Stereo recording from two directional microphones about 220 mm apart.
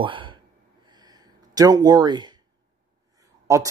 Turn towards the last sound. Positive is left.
turn(degrees=-15)  # may be behind; listen again after turning